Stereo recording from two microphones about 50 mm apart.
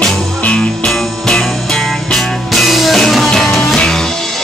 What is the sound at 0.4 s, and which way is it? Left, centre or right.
Music, left.